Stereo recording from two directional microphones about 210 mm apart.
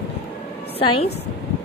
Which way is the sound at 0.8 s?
25° left (ahead or behind).